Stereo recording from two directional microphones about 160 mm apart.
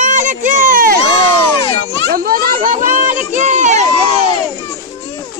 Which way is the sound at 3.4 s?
50° right (ahead or behind).